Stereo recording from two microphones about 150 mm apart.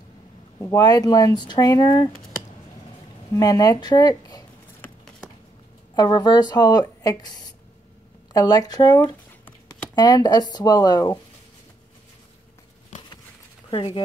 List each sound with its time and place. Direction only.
0.6 s speech: 25° left (ahead or behind)
3.3 s speech: 25° left (ahead or behind)
5.9 s speech: 25° left (ahead or behind)
13.7 s speech: 35° left (ahead or behind)